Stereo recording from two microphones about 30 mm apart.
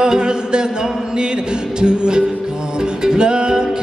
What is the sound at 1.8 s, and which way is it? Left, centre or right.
Music, right.